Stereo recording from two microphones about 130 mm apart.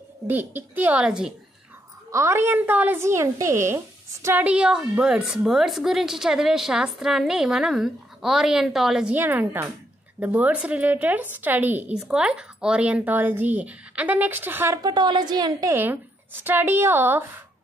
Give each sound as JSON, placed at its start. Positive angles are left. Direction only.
{"t": 0.3, "sound": "a woman's voice", "side_deg": -15}
{"t": 2.0, "sound": "a woman's voice", "side_deg": -20}
{"t": 14.8, "sound": "a woman's voice", "side_deg": -35}
{"t": 15.7, "sound": "a woman's voice", "side_deg": -15}